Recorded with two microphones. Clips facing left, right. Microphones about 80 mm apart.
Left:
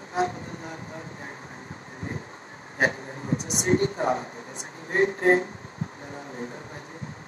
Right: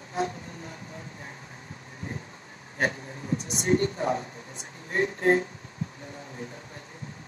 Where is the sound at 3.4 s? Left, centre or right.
Left.